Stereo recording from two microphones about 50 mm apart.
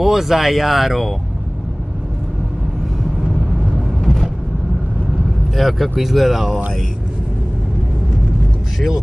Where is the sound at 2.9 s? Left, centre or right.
Centre.